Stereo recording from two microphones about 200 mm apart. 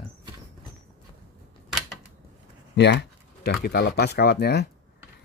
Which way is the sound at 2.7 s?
55° left (ahead or behind).